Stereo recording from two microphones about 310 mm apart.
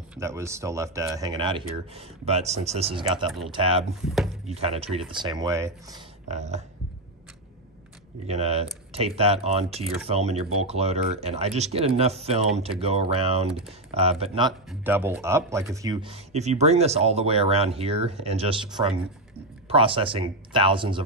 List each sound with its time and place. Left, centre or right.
0.1 s speech: centre
8.3 s speech: centre
13.5 s speech: centre
13.9 s speech: centre
14.7 s speech: centre